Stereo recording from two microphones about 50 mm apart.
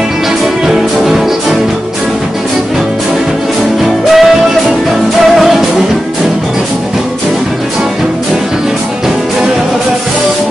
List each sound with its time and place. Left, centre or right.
0.7 s music: centre
3.8 s music: centre